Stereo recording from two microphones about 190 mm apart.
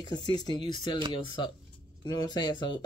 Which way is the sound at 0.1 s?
20° left (ahead or behind).